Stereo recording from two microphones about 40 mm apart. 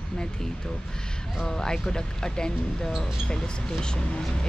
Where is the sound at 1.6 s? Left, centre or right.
Centre.